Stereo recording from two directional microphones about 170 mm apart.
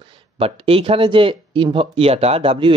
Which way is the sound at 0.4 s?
35° right (ahead or behind).